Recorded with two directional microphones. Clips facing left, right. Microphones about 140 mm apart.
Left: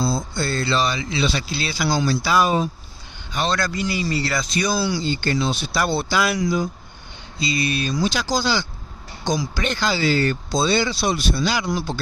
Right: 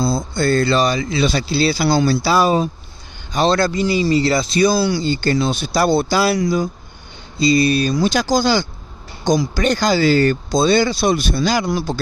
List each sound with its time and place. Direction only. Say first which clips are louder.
0.0 s speech: right 5 dB; 50° right (ahead or behind)
2.2 s mantra: right 4 dB; 35° right (ahead or behind)
3.3 s speech: right 7 dB; 30° right (ahead or behind)
4.8 s speech: right 5 dB; 50° right (ahead or behind)
7.3 s mantra: right 9 dB; 35° right (ahead or behind)
7.9 s speech: right 5 dB; 50° right (ahead or behind)